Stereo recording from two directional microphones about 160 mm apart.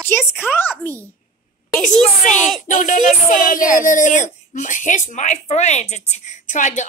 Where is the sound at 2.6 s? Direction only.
55° left (ahead or behind).